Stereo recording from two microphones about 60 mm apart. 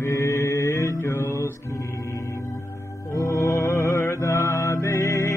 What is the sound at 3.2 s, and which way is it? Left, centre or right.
Music, left.